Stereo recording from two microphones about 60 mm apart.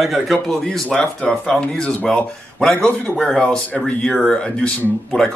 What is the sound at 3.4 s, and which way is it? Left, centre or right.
Speech, left.